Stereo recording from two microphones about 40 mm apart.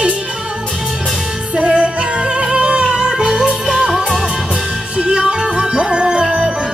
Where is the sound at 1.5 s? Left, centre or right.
Right; by 4.0 s centre.